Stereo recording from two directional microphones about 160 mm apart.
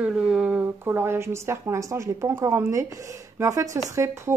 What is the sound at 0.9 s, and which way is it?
A woman's voice, 15° right (ahead or behind).